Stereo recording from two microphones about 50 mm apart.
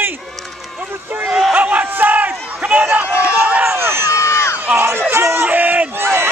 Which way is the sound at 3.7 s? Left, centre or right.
Right.